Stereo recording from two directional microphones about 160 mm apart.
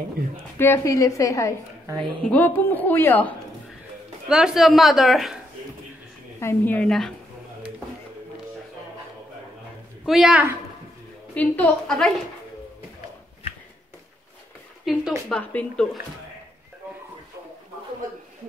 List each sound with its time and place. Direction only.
0.6 s a woman's voice: 15° left (ahead or behind)
4.3 s a woman's voice: 5° right (ahead or behind)
6.4 s a woman's voice: 10° left (ahead or behind)
10.0 s a woman's voice: centre (ahead or behind)
11.3 s a woman's voice: 10° left (ahead or behind)
14.9 s a woman's voice: centre (ahead or behind)